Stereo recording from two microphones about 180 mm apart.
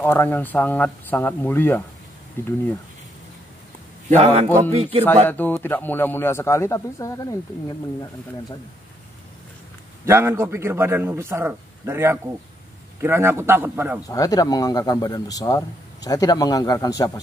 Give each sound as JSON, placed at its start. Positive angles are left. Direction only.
{"t": 0.0, "sound": "speech", "side_deg": 10}
{"t": 4.2, "sound": "speech", "side_deg": -40}
{"t": 5.0, "sound": "speech", "side_deg": 10}
{"t": 10.0, "sound": "a man's voice", "side_deg": -15}
{"t": 14.0, "sound": "speech", "side_deg": 20}